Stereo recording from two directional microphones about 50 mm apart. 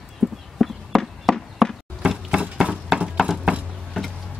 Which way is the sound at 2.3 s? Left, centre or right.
Right.